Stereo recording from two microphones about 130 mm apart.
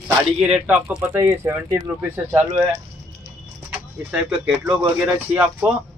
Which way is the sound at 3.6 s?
5° right (ahead or behind).